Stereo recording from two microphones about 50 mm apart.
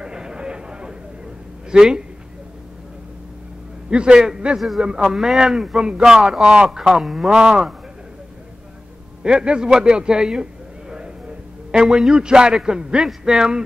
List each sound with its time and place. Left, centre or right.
0.0 s a sound: centre
1.7 s speech: centre
3.9 s a man's voice: centre
4.6 s speech: centre
9.2 s a sound: centre
11.9 s speech: centre
12.2 s speech: centre